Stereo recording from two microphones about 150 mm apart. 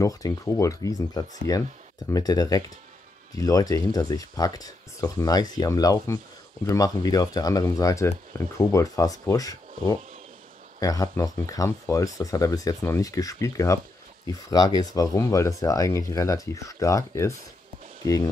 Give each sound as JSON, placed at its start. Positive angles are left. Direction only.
{"t": 0.0, "sound": "speech", "side_deg": 20}